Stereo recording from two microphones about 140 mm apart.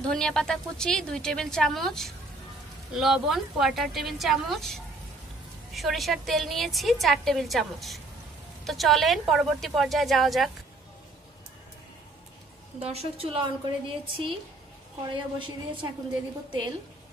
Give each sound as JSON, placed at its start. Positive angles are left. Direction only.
{"t": 0.1, "sound": "a woman's voice", "side_deg": 5}
{"t": 12.8, "sound": "a woman's voice", "side_deg": -45}
{"t": 15.3, "sound": "a woman's voice", "side_deg": -35}